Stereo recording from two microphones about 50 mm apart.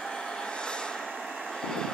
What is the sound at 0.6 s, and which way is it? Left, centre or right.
Vehicle, centre.